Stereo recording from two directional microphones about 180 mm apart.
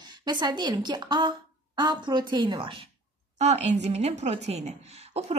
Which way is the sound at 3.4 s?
40° right (ahead or behind).